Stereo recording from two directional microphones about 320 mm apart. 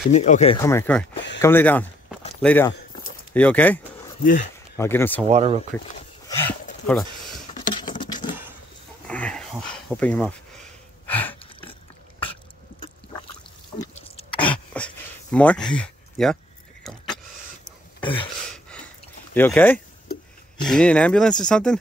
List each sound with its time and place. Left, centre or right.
0.1 s speech: left; by 1.0 s centre
1.1 s speech: left
1.4 s speech: centre
4.2 s speech: left
4.7 s speech: centre
5.3 s speech: centre
7.5 s patter: centre
9.0 s speech: centre
11.1 s a sound: centre
14.3 s a sound: centre
15.3 s speech: centre
16.8 s vehicle: centre
18.0 s a sound: centre
19.3 s speech: centre